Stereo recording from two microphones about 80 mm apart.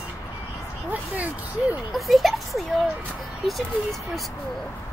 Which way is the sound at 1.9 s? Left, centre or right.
Centre.